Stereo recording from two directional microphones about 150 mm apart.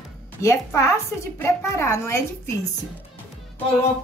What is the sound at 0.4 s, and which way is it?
A woman's voice, 20° left (ahead or behind).